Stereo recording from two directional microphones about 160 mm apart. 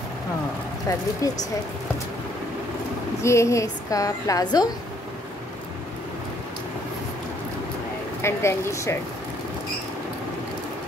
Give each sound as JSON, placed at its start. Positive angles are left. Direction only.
{"t": 0.9, "sound": "a woman's voice", "side_deg": 20}
{"t": 3.2, "sound": "a woman's voice", "side_deg": 15}
{"t": 8.2, "sound": "speech", "side_deg": 15}